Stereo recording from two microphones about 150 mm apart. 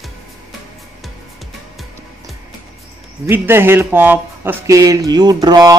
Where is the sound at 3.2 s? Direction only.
15° right (ahead or behind).